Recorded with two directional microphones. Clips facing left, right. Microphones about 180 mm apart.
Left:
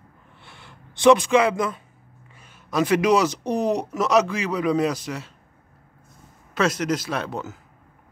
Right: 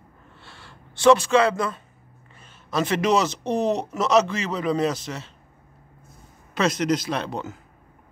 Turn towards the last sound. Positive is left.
turn(degrees=5)  # may be behind; listen again after turning